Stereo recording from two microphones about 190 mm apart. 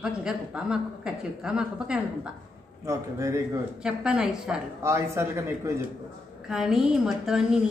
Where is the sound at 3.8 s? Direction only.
5° right (ahead or behind).